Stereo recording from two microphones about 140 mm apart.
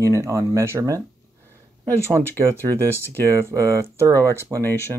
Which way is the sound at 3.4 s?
20° right (ahead or behind).